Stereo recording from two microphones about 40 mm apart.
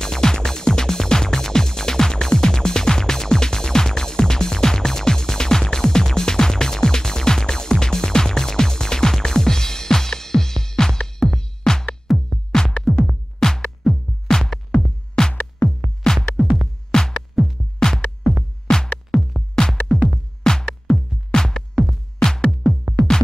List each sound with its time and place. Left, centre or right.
0.0 s music: centre